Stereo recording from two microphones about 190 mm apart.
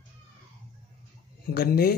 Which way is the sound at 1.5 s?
55° left (ahead or behind).